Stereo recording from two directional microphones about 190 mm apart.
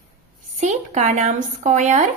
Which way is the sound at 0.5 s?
40° right (ahead or behind).